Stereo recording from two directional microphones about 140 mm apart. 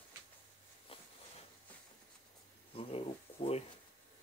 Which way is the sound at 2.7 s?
45° left (ahead or behind).